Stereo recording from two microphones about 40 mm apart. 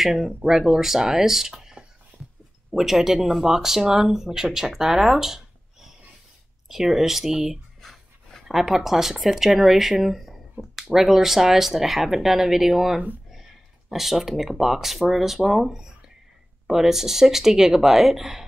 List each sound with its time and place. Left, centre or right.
0.0 s speech: centre
7.8 s rub: centre
8.5 s speech: centre